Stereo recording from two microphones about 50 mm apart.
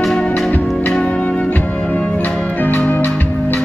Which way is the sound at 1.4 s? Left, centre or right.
Left.